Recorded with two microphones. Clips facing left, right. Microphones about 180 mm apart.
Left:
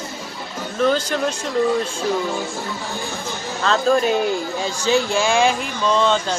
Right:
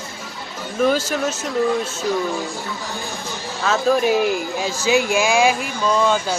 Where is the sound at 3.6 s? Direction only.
5° right (ahead or behind).